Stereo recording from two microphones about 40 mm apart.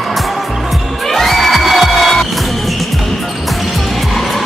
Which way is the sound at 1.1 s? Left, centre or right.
Centre.